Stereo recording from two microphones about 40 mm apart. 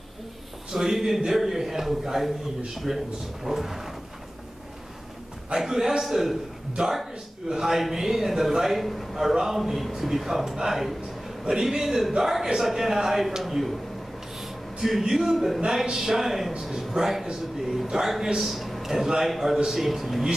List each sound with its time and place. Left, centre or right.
0.7 s a man's voice: centre
5.5 s a man's voice: centre
6.8 s a man's voice: right; by 20.2 s centre